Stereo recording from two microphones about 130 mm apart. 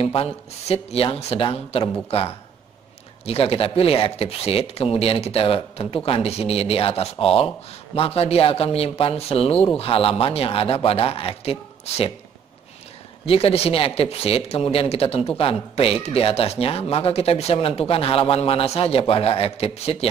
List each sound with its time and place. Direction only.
0.0 s speech: 45° left (ahead or behind)
13.2 s speech: 50° left (ahead or behind)